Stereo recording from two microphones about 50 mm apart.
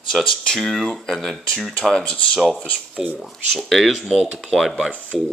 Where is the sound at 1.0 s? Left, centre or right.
Centre.